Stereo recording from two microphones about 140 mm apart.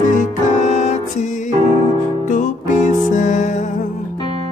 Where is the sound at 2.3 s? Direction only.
65° left (ahead or behind).